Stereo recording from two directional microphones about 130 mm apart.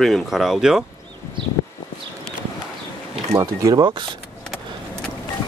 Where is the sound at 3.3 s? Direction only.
25° right (ahead or behind).